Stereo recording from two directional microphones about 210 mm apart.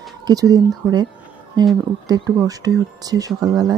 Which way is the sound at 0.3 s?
15° right (ahead or behind).